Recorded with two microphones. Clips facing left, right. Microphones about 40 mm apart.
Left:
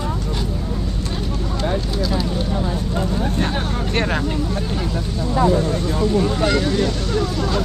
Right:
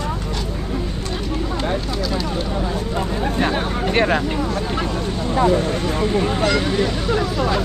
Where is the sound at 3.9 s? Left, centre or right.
Centre.